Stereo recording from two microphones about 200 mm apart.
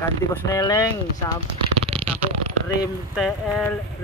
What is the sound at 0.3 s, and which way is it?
Speech, 15° left (ahead or behind).